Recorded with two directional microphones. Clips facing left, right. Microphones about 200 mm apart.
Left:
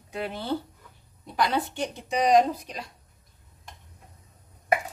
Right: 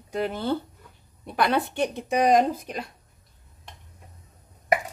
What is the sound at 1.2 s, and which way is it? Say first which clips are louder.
Speech: right 3 dB; 60° right (ahead or behind).